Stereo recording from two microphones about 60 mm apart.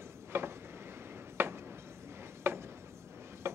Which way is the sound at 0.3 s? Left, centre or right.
Right.